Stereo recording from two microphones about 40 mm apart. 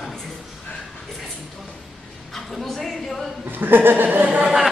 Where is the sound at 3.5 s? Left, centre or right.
Right.